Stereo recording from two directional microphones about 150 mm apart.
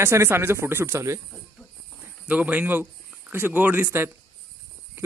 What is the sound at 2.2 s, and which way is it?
A man's voice, 10° right (ahead or behind).